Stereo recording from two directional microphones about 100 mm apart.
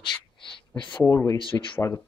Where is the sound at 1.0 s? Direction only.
30° left (ahead or behind).